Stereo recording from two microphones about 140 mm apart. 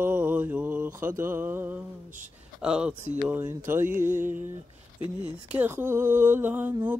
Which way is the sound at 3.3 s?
15° right (ahead or behind).